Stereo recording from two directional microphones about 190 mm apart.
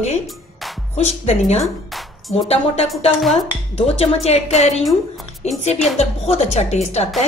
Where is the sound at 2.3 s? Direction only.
30° left (ahead or behind).